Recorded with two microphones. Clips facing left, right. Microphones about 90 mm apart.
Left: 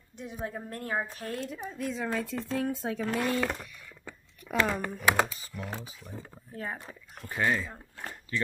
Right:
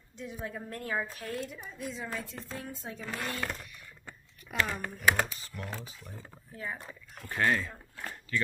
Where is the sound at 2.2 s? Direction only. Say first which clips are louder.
Left 9 dB; 80° left.